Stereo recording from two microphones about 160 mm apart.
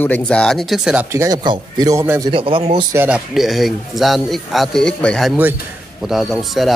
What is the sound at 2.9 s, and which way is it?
Speech, 10° right (ahead or behind).